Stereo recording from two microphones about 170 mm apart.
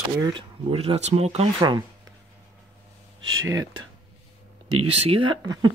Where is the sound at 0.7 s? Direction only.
40° right (ahead or behind).